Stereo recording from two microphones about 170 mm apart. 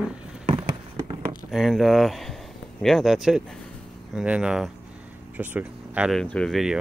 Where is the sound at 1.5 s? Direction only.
Centre (ahead or behind).